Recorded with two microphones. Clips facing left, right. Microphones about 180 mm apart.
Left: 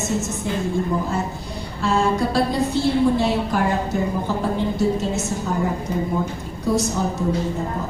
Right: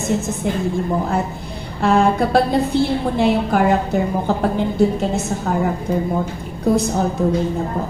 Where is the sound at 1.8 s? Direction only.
60° right (ahead or behind).